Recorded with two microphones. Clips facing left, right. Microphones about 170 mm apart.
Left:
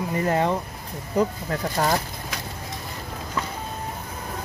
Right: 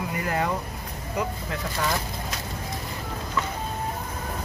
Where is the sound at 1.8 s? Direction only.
45° left (ahead or behind).